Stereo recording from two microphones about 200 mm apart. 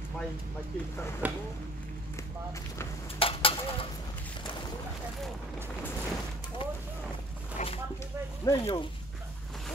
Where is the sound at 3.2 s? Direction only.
25° left (ahead or behind).